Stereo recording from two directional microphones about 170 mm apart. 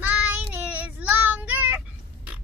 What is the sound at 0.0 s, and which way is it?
Child singing, 10° right (ahead or behind).